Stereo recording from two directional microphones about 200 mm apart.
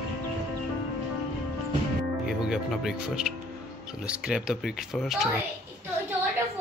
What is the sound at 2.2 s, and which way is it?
A woman's voice, centre (ahead or behind).